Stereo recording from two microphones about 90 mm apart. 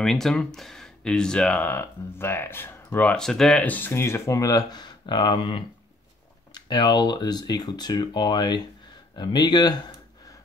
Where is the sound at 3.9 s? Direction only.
30° left (ahead or behind); by 5.7 s 65° left (ahead or behind).